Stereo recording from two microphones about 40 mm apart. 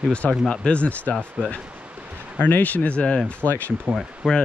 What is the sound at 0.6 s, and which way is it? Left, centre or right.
Speech, left.